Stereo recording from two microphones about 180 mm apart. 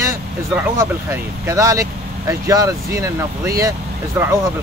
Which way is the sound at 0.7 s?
15° right (ahead or behind).